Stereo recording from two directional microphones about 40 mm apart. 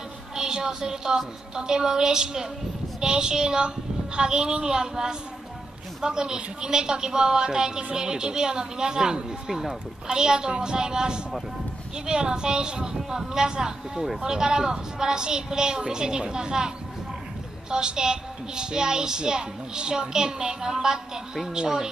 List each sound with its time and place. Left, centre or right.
0.4 s a woman's voice: centre
10.0 s a woman's voice: centre